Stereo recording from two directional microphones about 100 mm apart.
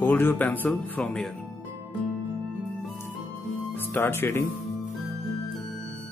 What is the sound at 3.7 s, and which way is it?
Speech, 20° left (ahead or behind).